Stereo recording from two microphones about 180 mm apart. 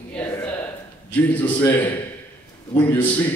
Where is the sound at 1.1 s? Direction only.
10° left (ahead or behind).